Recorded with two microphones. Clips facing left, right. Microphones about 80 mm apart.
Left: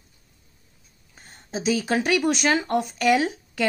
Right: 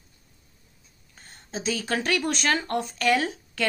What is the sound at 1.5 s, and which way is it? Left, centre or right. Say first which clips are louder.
Speech: left 5 dB; centre.